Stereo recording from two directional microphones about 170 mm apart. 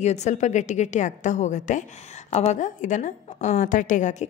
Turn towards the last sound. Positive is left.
turn(degrees=50)  # may be behind; listen again after turning